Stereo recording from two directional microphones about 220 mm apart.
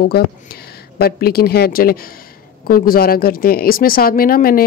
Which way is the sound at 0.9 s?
45° left (ahead or behind).